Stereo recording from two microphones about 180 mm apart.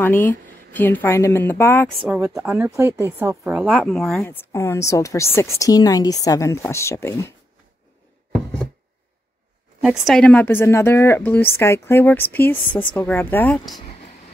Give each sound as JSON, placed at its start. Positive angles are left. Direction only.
{"t": 0.0, "sound": "a woman's voice", "side_deg": 10}
{"t": 2.0, "sound": "a woman's voice", "side_deg": -10}
{"t": 4.2, "sound": "a woman's voice", "side_deg": 15}
{"t": 9.8, "sound": "a woman's voice", "side_deg": 0}